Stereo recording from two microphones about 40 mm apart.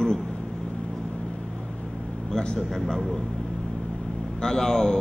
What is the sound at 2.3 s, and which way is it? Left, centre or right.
Speech, centre.